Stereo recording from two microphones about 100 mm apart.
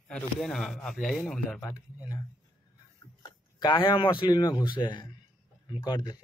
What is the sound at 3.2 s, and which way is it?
Speech, 50° left (ahead or behind).